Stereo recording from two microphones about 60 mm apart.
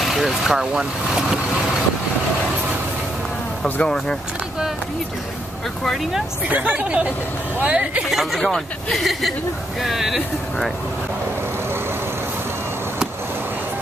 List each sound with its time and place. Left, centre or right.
0.0 s speech: centre
3.8 s speech: centre
6.4 s speech: right
8.1 s speech: centre
8.4 s speech: centre